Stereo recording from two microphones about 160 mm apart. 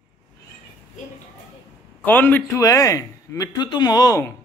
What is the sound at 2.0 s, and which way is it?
A man's voice, 10° left (ahead or behind).